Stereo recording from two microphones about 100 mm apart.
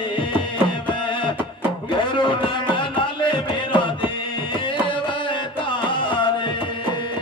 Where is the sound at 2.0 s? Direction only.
55° left (ahead or behind).